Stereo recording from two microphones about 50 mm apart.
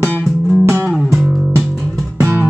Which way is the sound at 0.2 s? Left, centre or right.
Centre.